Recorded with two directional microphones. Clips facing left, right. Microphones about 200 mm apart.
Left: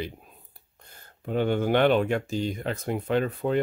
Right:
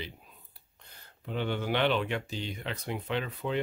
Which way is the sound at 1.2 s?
45° left (ahead or behind).